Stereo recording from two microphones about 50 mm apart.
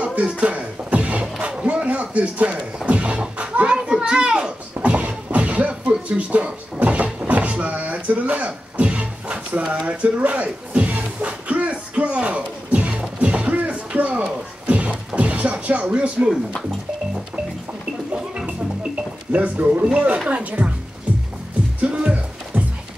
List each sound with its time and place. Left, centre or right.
0.0 s a sound: right
1.4 s music: right
3.3 s a sound: right
9.8 s music: right
19.3 s speech: right
21.9 s music: right